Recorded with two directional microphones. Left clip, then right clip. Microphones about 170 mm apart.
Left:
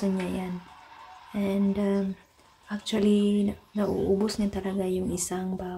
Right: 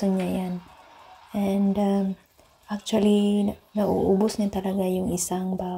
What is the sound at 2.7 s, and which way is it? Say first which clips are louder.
Speech: right 3 dB; 15° right (ahead or behind).